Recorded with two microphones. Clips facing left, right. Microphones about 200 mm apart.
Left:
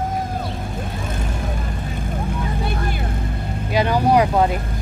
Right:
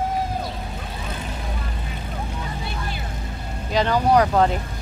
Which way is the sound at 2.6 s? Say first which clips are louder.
Left 6 dB; 50° left (ahead or behind).